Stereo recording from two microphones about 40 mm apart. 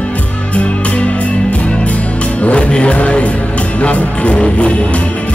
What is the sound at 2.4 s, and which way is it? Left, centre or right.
Music, left.